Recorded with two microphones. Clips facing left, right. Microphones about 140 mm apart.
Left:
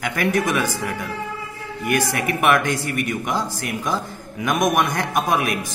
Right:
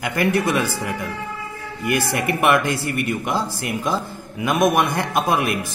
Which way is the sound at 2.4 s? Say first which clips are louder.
Even; 10° right (ahead or behind).